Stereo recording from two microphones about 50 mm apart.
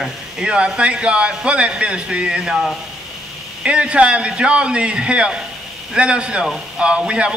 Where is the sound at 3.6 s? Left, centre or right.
Right.